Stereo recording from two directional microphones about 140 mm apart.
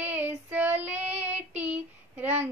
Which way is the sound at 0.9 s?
50° right (ahead or behind).